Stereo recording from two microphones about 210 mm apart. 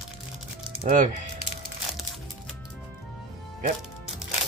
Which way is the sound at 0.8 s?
35° right (ahead or behind).